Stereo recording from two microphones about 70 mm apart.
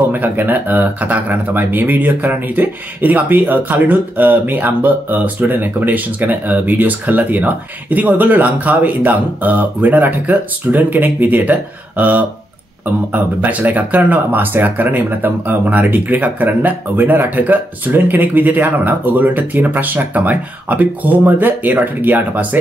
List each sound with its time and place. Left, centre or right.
0.1 s speech: right